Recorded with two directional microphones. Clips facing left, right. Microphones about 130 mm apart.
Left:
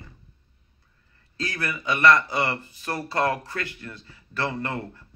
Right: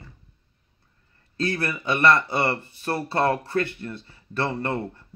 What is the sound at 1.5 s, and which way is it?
Speech, 30° right (ahead or behind).